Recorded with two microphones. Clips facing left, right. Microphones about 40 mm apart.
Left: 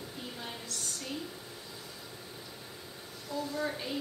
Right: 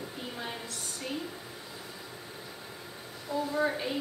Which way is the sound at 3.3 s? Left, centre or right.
Centre.